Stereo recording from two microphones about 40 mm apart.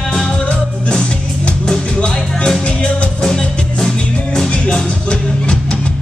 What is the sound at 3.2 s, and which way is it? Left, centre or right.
Music, centre.